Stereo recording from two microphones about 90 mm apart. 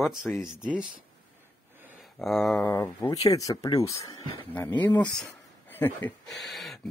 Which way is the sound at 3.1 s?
40° left (ahead or behind).